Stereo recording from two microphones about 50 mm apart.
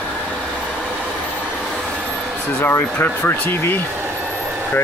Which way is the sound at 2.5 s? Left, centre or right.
Left.